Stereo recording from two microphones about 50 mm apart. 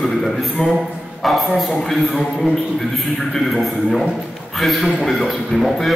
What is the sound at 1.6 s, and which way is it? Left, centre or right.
Speech, centre.